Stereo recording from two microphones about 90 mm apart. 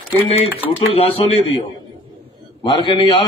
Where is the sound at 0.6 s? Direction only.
90° left.